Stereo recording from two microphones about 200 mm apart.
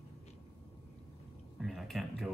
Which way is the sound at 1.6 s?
Centre (ahead or behind).